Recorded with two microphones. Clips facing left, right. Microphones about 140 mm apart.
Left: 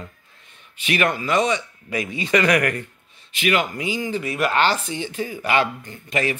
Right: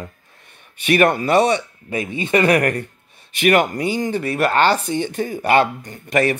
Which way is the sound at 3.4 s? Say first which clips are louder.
Right 6 dB; 55° right (ahead or behind).